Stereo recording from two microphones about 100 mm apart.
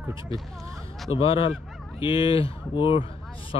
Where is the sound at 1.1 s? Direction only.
65° left (ahead or behind).